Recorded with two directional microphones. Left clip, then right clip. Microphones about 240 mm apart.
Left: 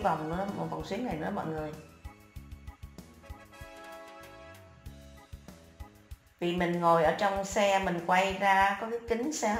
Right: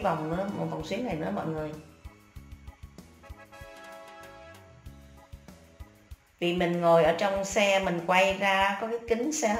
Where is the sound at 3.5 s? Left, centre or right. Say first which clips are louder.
Right 1 dB; centre.